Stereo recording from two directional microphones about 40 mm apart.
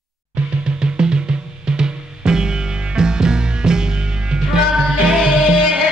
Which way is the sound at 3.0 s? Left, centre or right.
Centre.